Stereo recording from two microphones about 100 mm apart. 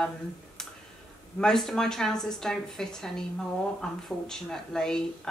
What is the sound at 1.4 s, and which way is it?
A woman's voice, 5° left (ahead or behind).